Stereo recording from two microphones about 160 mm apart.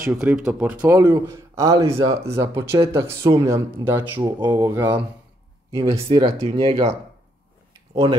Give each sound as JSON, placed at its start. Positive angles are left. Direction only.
{"t": 0.0, "sound": "speech", "side_deg": -10}